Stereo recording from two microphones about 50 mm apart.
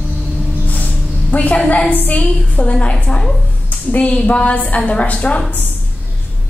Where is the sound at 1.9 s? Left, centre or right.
Left.